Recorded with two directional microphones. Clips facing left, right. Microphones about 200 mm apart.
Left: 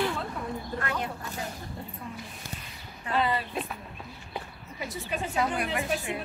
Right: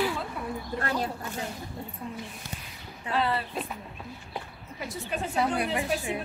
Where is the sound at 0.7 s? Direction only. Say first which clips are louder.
Right 4 dB; 35° right (ahead or behind).